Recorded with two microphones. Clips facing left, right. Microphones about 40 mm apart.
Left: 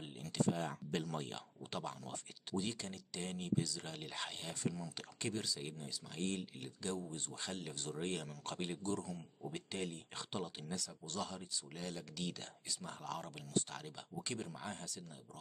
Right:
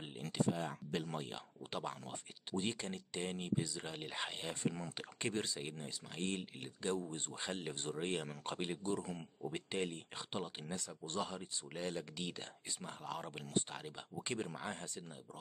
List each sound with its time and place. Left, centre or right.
0.5 s speech: centre; by 15.0 s right